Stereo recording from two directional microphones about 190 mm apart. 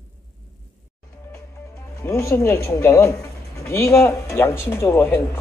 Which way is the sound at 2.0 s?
15° left (ahead or behind).